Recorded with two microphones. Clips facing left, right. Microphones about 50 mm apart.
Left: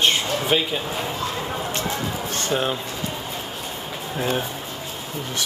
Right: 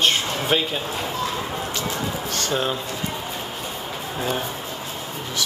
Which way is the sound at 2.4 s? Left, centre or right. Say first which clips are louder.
Left 1 dB; left.